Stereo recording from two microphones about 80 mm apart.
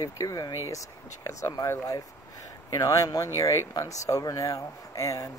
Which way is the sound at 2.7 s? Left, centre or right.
Left.